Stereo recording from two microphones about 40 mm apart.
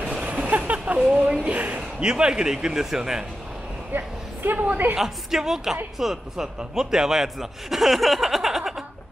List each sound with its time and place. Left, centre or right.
0.2 s a sound: right
1.4 s speech: right
2.0 s a man's voice: right
3.9 s a woman's voice: right
4.9 s a man's voice: centre